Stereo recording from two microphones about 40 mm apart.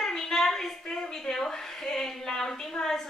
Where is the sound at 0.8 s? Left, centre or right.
Centre.